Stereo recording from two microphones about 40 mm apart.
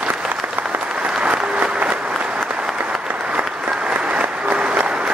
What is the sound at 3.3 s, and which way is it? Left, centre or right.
Applause, right.